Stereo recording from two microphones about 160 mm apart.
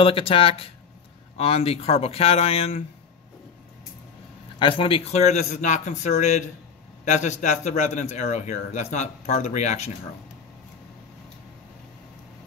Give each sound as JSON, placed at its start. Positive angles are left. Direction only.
{"t": 0.0, "sound": "a man's voice", "side_deg": 35}
{"t": 4.6, "sound": "a man's voice", "side_deg": 30}